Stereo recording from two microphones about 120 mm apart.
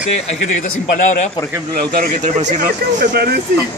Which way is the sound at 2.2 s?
90° right.